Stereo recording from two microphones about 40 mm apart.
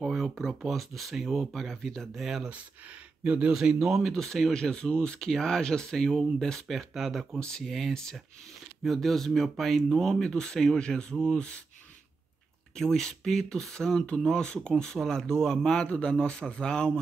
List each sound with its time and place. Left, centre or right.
0.1 s speech: centre
2.1 s speech: centre
3.3 s speech: right
3.5 s speech: centre
4.0 s speech: centre
7.0 s speech: centre
7.3 s speech: centre
7.6 s speech: centre
7.9 s speech: centre
8.8 s speech: centre
11.3 s speech: left
12.7 s speech: centre